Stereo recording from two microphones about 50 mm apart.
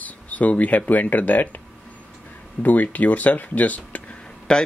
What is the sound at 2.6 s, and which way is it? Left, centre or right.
Speech, left.